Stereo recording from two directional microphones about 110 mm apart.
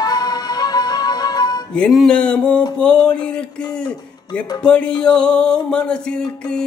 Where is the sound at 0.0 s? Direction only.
40° left (ahead or behind).